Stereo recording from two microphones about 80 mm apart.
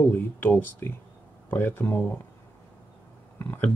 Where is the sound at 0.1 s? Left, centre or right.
Left.